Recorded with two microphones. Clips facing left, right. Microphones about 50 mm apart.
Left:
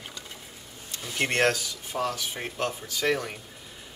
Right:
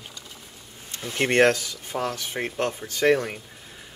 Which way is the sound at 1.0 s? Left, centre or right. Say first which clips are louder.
Right 5 dB; right.